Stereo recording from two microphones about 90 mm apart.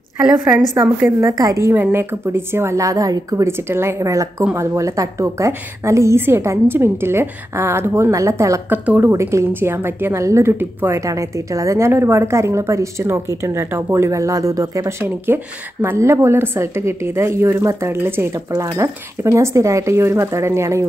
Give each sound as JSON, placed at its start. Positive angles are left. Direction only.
{"t": 0.8, "sound": "a woman's voice", "side_deg": -20}
{"t": 1.2, "sound": "a woman's voice", "side_deg": -40}
{"t": 1.7, "sound": "a woman's voice", "side_deg": -25}
{"t": 3.6, "sound": "a woman's voice", "side_deg": -30}
{"t": 8.6, "sound": "a woman's voice", "side_deg": -20}
{"t": 9.1, "sound": "a woman's voice", "side_deg": -30}
{"t": 11.1, "sound": "a woman's voice", "side_deg": -35}